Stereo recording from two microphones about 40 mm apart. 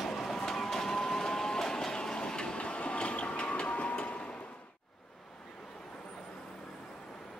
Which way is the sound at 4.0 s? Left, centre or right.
Left.